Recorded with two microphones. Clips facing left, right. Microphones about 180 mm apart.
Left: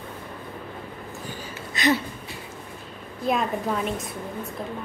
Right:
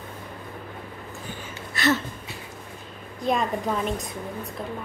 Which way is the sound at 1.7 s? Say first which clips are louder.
Left 1 dB; 15° left (ahead or behind).